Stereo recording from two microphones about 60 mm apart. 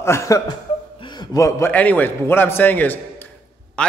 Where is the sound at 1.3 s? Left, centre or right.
Left.